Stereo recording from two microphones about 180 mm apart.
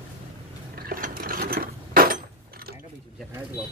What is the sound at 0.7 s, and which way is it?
Mechanisms, 55° right (ahead or behind).